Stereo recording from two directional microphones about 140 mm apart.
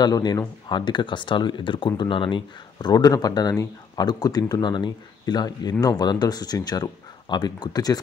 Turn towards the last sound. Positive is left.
turn(degrees=25)  # may be behind; listen again after turning